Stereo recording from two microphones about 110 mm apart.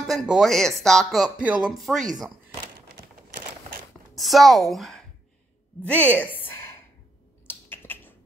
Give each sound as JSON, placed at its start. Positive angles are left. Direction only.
{"t": 0.0, "sound": "speech", "side_deg": -5}
{"t": 1.8, "sound": "speech", "side_deg": 0}
{"t": 4.1, "sound": "speech", "side_deg": 0}
{"t": 5.9, "sound": "a sound", "side_deg": 15}